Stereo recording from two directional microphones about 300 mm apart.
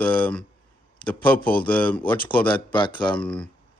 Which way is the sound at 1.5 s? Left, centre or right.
Centre.